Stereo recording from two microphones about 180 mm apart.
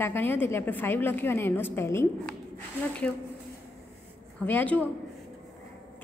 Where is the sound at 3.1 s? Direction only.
5° left (ahead or behind).